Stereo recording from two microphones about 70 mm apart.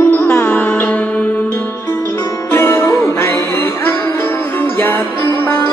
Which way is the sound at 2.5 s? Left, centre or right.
Left.